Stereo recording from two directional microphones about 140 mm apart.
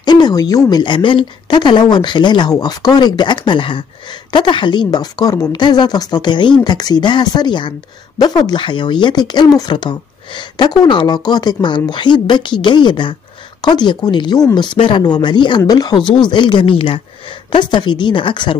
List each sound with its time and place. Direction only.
0.0 s speech: 30° left (ahead or behind)